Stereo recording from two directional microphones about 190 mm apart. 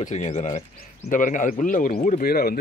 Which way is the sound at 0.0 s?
40° left (ahead or behind).